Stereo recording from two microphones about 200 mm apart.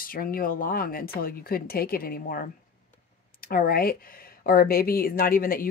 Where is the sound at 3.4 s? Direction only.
50° left (ahead or behind).